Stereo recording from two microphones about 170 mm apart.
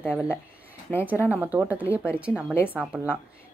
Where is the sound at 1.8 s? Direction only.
15° left (ahead or behind).